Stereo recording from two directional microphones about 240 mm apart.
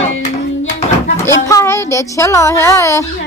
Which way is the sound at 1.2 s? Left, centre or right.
Centre.